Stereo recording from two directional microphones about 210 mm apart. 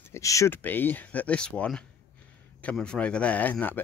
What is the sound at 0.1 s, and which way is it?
Speech, 15° left (ahead or behind).